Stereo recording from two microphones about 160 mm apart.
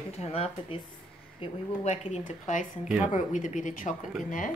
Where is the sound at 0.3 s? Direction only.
40° left (ahead or behind).